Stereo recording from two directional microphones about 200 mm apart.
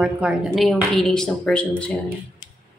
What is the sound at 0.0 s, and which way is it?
A woman's voice, 5° right (ahead or behind).